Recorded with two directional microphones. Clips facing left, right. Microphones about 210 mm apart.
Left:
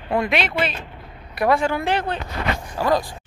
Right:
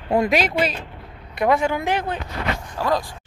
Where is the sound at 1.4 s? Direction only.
15° right (ahead or behind).